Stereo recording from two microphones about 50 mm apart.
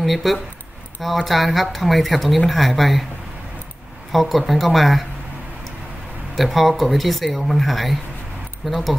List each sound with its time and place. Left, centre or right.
0.0 s speech: centre
4.1 s speech: centre
6.3 s speech: centre